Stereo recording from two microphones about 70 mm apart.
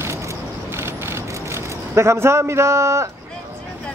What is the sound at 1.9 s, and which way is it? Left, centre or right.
A man's voice, right.